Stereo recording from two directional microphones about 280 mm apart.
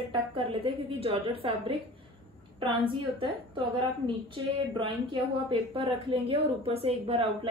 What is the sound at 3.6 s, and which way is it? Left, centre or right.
A woman's voice, centre.